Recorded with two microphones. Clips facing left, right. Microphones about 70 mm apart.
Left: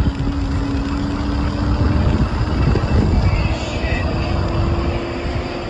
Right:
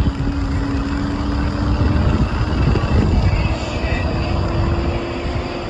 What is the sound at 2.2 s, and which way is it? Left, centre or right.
Vehicle, left.